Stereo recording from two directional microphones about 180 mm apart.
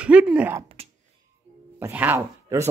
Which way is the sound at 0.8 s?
35° right (ahead or behind).